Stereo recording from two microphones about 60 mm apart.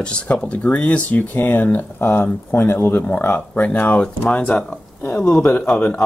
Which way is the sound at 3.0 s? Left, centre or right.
Left.